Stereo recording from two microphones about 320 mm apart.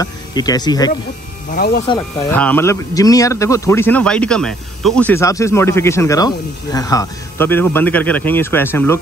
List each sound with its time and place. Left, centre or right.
0.0 s speech: centre
1.5 s speech: left
1.9 s speech: centre